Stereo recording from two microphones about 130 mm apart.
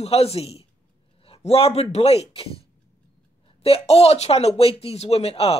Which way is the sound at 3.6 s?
50° left (ahead or behind).